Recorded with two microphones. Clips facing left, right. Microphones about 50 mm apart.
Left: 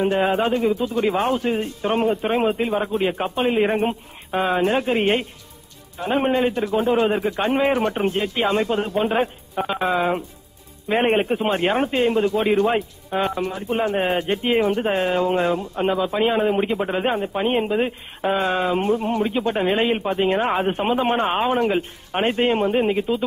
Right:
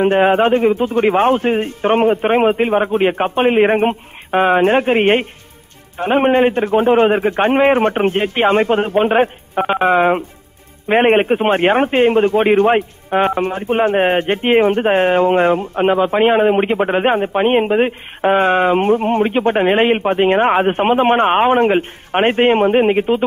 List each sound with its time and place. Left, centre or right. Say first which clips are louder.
0.0 s a man's voice: right 7 dB; right